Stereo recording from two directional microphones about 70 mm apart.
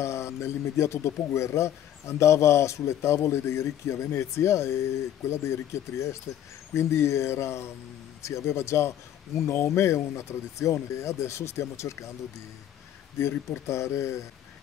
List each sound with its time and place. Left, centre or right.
0.0 s speech: left
13.2 s speech: left